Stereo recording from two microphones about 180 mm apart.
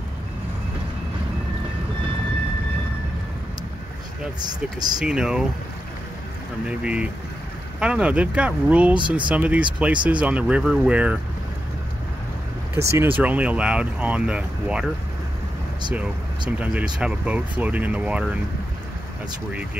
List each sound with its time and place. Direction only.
4.4 s speech: 20° right (ahead or behind)
4.9 s speech: 5° right (ahead or behind)
6.8 s speech: 5° right (ahead or behind)
12.7 s speech: 15° right (ahead or behind)
15.9 s speech: 5° right (ahead or behind)